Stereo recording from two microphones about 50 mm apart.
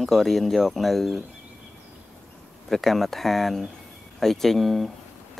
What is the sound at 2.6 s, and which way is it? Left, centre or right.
Speech, centre.